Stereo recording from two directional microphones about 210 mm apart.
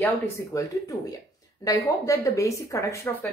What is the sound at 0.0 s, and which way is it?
Speech, 15° left (ahead or behind).